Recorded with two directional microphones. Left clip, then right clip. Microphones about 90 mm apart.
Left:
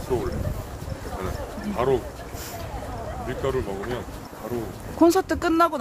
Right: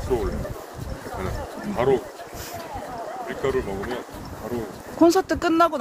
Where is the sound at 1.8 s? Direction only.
25° left (ahead or behind).